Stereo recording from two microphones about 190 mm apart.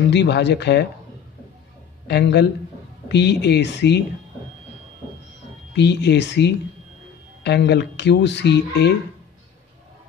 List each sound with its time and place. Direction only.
0.1 s speech: 65° left (ahead or behind)
2.0 s speech: 60° left (ahead or behind)
5.8 s speech: 65° left (ahead or behind)